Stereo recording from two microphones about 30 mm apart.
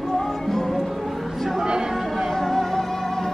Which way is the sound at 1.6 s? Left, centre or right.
Right.